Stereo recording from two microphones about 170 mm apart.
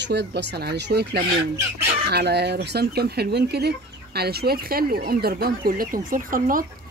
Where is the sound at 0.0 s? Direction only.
80° right.